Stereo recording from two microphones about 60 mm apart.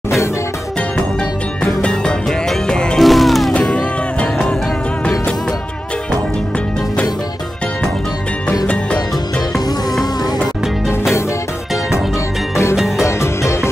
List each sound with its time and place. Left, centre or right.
1.8 s music: centre
3.0 s music: centre
3.5 s music: centre
12.7 s music: centre
13.0 s music: left